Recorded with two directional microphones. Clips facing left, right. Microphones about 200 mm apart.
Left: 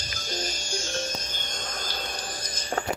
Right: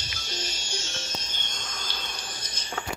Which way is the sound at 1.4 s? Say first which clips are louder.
Left 5 dB; 55° left (ahead or behind).